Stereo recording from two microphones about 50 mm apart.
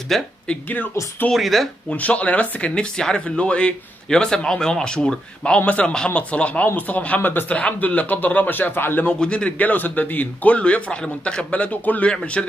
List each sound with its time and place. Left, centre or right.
0.1 s speech: centre
1.0 s speech: left
1.3 s speech: centre
1.9 s a man's voice: left
2.7 s speech: centre
5.7 s a man's voice: left
7.2 s speech: left
7.4 s a man's voice: left
9.0 s a man's voice: left
9.6 s a man's voice: left
12.1 s a man's voice: centre